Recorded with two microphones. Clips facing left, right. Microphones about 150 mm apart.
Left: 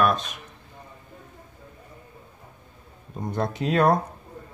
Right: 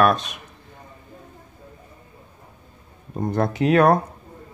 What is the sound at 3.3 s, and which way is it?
Speech, 70° right (ahead or behind).